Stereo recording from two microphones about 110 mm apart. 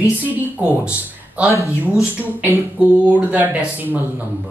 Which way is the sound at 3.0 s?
15° right (ahead or behind).